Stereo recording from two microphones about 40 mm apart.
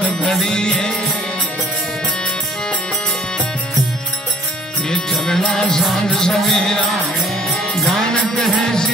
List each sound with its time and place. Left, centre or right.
0.5 s music: left
5.1 s music: centre
8.0 s music: centre